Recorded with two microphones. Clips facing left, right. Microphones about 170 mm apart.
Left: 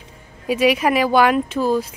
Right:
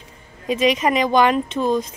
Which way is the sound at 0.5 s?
10° left (ahead or behind).